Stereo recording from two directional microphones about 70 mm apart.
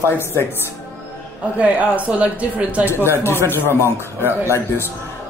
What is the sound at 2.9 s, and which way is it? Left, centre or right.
Speech, left.